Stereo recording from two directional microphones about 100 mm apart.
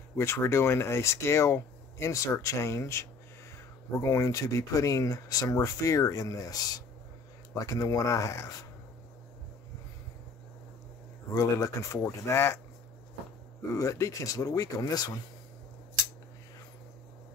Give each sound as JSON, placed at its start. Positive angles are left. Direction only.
{"t": 0.2, "sound": "speech", "side_deg": 25}
{"t": 11.3, "sound": "speech", "side_deg": 30}
{"t": 13.6, "sound": "speech", "side_deg": 30}